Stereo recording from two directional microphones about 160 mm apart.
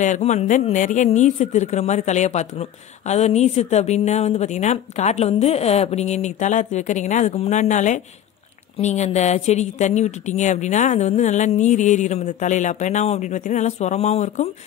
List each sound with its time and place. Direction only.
0.0 s speech: 50° left (ahead or behind)